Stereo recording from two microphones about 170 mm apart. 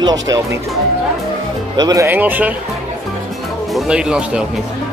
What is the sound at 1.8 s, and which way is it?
Speech, 20° right (ahead or behind).